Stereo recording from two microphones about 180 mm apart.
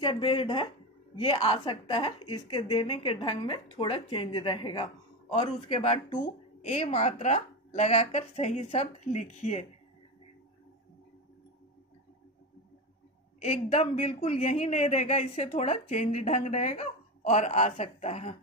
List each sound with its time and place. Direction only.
0.0 s a woman's voice: 30° left (ahead or behind)
13.4 s speech: 40° left (ahead or behind)